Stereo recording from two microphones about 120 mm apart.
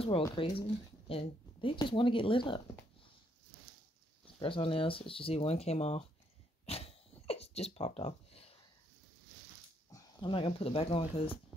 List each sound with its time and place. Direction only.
0.4 s speech: 50° left (ahead or behind)
4.4 s speech: 45° left (ahead or behind); by 6.0 s 60° left (ahead or behind)
6.6 s a sound: 55° left (ahead or behind)
10.2 s speech: 45° left (ahead or behind)